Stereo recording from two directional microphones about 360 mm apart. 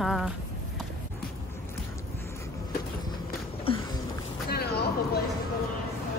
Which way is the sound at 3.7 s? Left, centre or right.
Centre.